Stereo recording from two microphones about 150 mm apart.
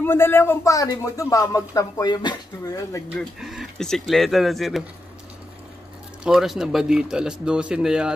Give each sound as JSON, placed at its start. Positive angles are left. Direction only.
{"t": 0.0, "sound": "speech", "side_deg": 15}
{"t": 3.2, "sound": "speech", "side_deg": -5}
{"t": 6.2, "sound": "speech", "side_deg": 0}